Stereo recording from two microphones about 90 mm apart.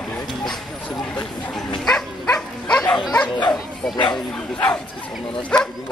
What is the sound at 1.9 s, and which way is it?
Dog, 10° left (ahead or behind).